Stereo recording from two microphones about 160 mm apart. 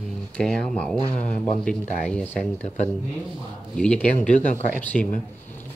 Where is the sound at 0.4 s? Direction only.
5° left (ahead or behind).